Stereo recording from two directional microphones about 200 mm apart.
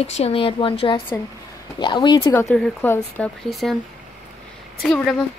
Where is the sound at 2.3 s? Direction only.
5° left (ahead or behind).